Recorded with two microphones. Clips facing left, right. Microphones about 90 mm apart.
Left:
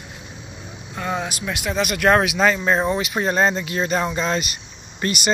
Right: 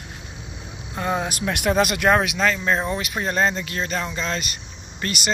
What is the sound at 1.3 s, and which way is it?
Speech, 50° right (ahead or behind).